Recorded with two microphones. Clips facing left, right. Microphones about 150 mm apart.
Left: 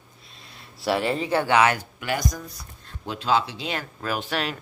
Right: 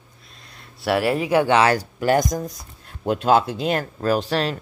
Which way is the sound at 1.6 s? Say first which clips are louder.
Right 3 dB; 35° right (ahead or behind).